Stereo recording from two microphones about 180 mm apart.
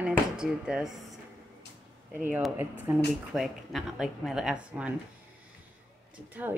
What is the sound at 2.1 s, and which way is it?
Speech, 10° right (ahead or behind).